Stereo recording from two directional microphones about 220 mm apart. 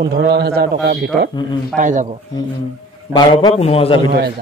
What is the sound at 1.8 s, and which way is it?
Speech, 35° right (ahead or behind).